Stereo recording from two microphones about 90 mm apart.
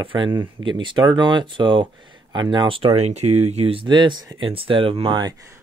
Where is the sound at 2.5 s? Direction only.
75° right (ahead or behind).